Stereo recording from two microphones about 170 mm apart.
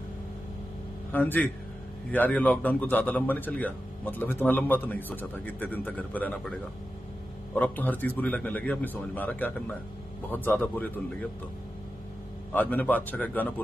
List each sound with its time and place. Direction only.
1.1 s speech: 10° left (ahead or behind)
7.5 s speech: 10° left (ahead or behind)
12.5 s speech: 10° left (ahead or behind)